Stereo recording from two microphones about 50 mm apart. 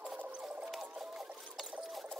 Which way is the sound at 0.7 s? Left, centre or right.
Centre.